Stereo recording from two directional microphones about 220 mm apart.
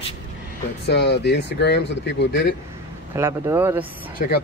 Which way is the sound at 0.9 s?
50° left (ahead or behind).